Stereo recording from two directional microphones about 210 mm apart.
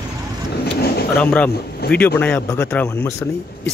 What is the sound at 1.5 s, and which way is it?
Speech, 50° left (ahead or behind).